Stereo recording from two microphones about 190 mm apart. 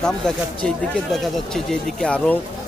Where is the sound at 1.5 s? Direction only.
5° left (ahead or behind).